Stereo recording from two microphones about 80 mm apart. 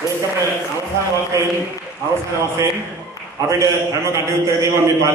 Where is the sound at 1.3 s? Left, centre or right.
Right.